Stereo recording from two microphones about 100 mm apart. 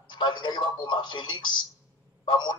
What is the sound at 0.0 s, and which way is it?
Speech, 50° left (ahead or behind).